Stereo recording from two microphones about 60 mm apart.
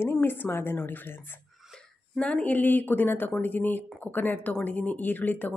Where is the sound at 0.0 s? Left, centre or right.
Left.